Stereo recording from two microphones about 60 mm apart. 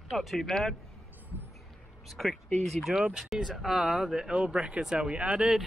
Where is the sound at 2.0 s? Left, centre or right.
Centre.